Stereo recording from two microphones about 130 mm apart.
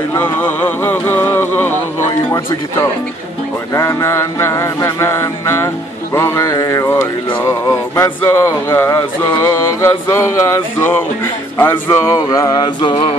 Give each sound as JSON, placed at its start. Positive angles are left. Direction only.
{"t": 0.1, "sound": "speech", "side_deg": 15}
{"t": 3.7, "sound": "speech", "side_deg": 20}
{"t": 6.1, "sound": "mantra", "side_deg": 20}
{"t": 7.4, "sound": "speech", "side_deg": 20}